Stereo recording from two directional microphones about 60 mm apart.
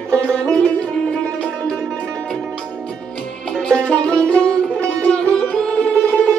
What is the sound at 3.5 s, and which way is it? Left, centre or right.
Music, centre.